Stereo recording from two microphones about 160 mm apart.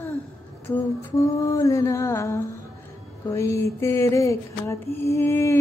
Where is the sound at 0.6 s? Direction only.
15° left (ahead or behind).